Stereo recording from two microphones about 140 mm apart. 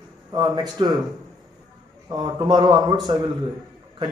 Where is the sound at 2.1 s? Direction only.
30° right (ahead or behind).